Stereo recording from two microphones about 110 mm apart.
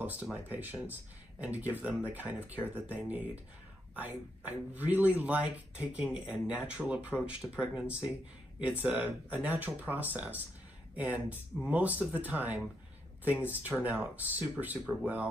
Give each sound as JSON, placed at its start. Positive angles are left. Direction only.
{"t": 0.0, "sound": "a man's voice", "side_deg": -15}